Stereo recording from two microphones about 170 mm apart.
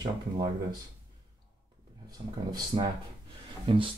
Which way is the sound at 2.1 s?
25° right (ahead or behind).